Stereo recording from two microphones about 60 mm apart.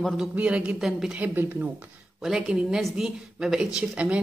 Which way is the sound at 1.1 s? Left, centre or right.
Right.